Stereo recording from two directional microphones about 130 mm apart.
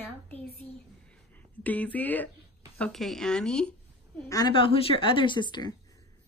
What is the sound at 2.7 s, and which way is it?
Speech, 5° left (ahead or behind).